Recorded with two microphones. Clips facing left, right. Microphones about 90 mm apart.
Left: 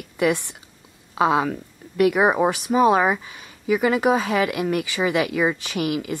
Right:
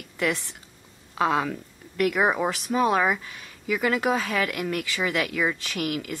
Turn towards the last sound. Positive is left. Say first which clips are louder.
# left 5 dB
turn(degrees=20)  # may be behind; listen again after turning